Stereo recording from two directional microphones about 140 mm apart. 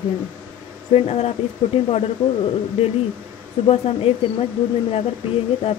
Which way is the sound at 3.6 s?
45° left (ahead or behind).